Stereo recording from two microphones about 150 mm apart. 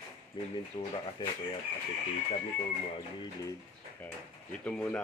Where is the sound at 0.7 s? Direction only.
35° left (ahead or behind).